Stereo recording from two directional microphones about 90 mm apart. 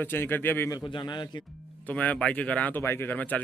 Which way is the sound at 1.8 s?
15° left (ahead or behind).